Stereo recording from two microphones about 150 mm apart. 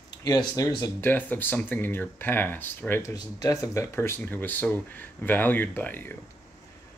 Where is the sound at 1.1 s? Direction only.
10° left (ahead or behind).